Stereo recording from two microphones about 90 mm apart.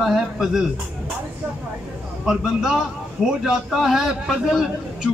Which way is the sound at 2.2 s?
5° right (ahead or behind).